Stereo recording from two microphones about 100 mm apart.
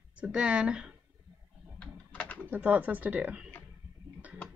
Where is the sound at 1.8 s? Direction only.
10° left (ahead or behind).